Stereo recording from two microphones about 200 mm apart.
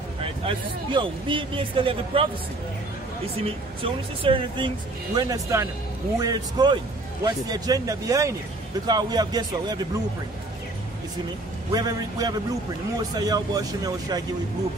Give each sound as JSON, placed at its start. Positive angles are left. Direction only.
{"t": 0.2, "sound": "a woman's voice", "side_deg": -25}
{"t": 3.4, "sound": "a woman's voice", "side_deg": -25}
{"t": 11.7, "sound": "a woman's voice", "side_deg": -20}